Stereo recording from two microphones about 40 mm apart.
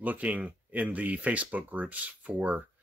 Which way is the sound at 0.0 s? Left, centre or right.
Right.